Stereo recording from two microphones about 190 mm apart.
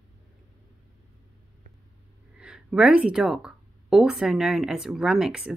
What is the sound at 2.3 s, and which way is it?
Speech, 5° right (ahead or behind).